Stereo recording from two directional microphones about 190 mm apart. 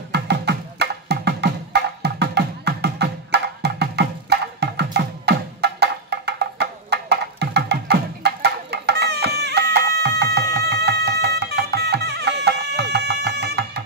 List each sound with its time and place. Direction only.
0.1 s music: 60° right (ahead or behind)